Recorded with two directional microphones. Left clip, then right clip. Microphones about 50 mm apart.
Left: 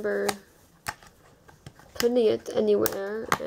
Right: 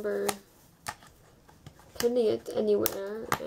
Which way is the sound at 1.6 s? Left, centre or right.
Left.